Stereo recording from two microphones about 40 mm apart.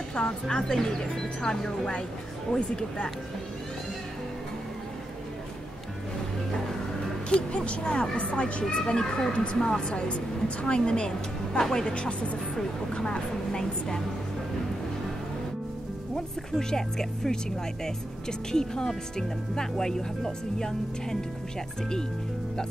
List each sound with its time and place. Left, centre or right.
0.1 s a woman's voice: left
0.7 s a woman's voice: centre
7.2 s a woman's voice: left
8.6 s a woman's voice: centre
16.5 s speech: centre
18.5 s speech: centre